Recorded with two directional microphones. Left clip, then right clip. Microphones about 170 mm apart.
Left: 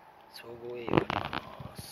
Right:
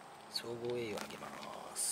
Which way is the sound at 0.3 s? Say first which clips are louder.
Right 2 dB; 15° right (ahead or behind).